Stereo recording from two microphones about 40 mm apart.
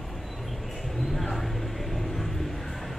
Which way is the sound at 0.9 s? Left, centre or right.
Centre.